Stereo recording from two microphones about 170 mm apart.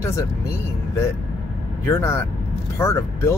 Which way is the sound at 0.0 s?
15° left (ahead or behind).